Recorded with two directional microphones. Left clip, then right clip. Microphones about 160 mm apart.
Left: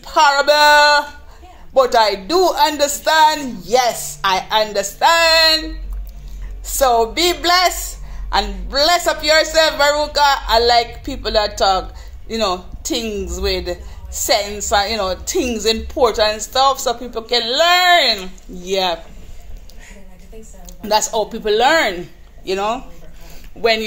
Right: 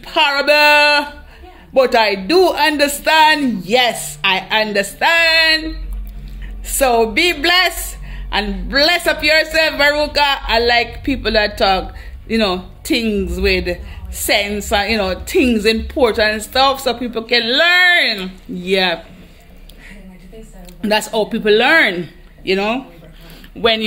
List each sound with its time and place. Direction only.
0.0 s speech: 10° right (ahead or behind)
20.6 s speech: 5° right (ahead or behind)